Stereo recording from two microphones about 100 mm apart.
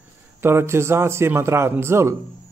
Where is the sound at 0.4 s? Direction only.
25° right (ahead or behind).